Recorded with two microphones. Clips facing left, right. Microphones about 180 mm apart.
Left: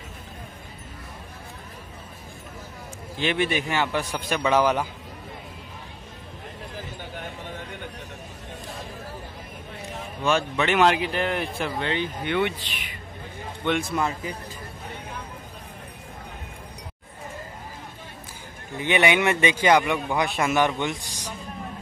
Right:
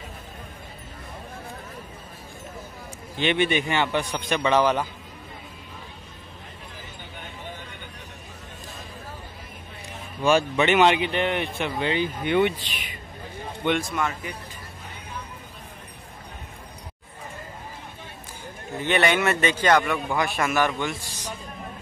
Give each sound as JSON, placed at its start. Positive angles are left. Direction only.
{"t": 3.2, "sound": "speech", "side_deg": 0}
{"t": 10.2, "sound": "speech", "side_deg": -10}
{"t": 13.7, "sound": "speech", "side_deg": 0}
{"t": 13.9, "sound": "speech", "side_deg": 30}
{"t": 18.9, "sound": "a man's voice", "side_deg": 15}